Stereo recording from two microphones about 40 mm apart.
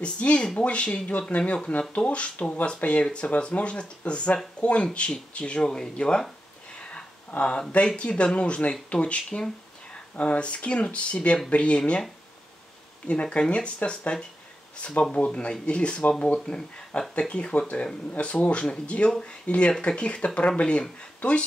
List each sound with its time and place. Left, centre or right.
0.0 s speech: left
6.8 s a sound: left
7.7 s speech: left
13.0 s speech: left
15.1 s speech: left